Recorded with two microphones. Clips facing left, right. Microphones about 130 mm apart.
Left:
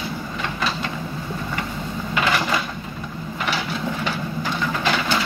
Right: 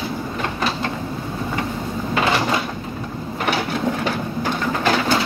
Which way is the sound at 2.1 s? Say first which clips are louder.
Right 2 dB; 30° right (ahead or behind).